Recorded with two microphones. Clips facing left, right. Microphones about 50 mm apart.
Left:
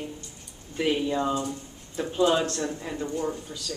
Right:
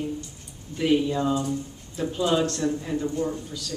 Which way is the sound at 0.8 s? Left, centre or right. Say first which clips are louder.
Right 3 dB; centre.